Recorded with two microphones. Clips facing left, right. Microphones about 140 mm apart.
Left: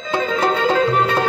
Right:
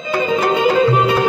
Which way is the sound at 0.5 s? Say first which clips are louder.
Right 4 dB; 5° right (ahead or behind).